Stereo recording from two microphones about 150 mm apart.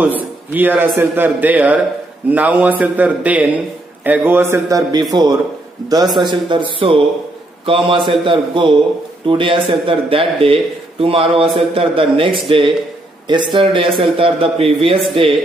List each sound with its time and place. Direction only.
0.0 s a man's voice: 10° right (ahead or behind); by 15.2 s 35° right (ahead or behind)